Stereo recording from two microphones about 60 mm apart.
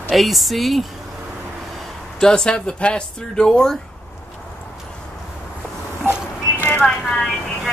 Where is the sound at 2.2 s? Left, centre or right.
Centre.